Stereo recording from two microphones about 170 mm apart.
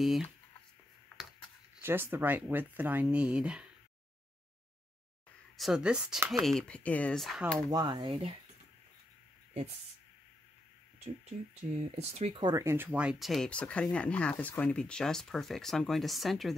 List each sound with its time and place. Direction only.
0.0 s speech: centre (ahead or behind)
1.8 s speech: 15° right (ahead or behind)
5.6 s speech: 5° right (ahead or behind)
7.5 s speech: 25° right (ahead or behind)
12.0 s speech: 40° right (ahead or behind)
12.4 s speech: 20° right (ahead or behind); by 16.5 s centre (ahead or behind)